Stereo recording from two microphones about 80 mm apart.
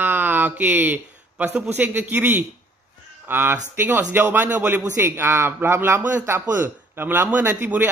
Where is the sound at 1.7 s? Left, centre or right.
Right.